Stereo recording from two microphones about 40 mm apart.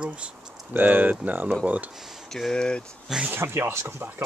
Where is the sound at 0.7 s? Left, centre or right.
Right.